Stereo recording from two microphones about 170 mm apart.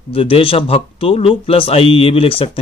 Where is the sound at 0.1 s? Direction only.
35° left (ahead or behind).